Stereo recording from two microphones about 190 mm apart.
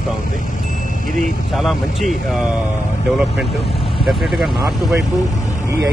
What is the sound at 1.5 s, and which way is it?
Speech, centre (ahead or behind).